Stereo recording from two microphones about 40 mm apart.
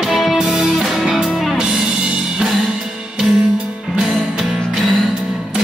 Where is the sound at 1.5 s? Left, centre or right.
Right.